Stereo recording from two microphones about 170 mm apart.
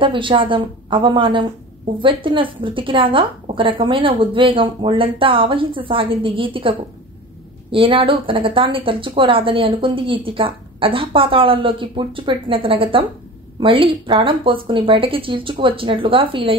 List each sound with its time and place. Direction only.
0.0 s a woman's voice: 30° right (ahead or behind)
7.7 s a woman's voice: 30° right (ahead or behind)